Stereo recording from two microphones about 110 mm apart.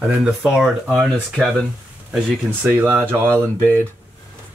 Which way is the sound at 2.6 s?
20° right (ahead or behind).